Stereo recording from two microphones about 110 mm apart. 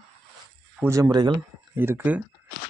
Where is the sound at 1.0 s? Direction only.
40° right (ahead or behind).